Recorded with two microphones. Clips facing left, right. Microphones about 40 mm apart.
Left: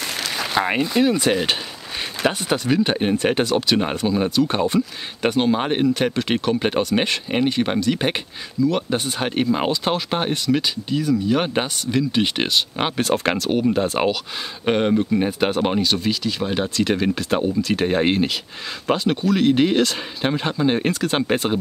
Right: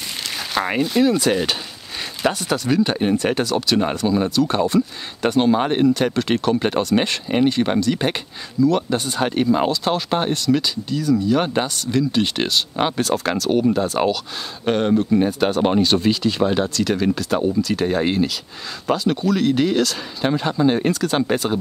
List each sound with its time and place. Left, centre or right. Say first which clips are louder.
0.6 s speech: right 1 dB; left
13.5 s speech: right 3 dB; centre
15.8 s speech: right 4 dB; centre
16.4 s speech: right 3 dB; centre
16.7 s speech: even; left